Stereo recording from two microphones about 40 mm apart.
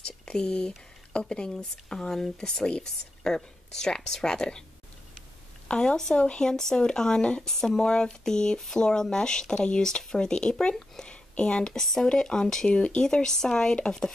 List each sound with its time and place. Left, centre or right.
0.2 s speech: centre
5.7 s speech: left
11.8 s speech: centre
12.1 s speech: centre
12.7 s speech: left
13.0 s speech: centre